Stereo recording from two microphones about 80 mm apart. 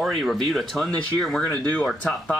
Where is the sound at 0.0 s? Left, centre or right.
Centre.